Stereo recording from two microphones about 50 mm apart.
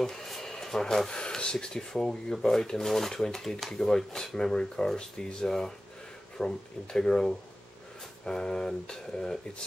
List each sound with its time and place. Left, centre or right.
0.0 s speech: centre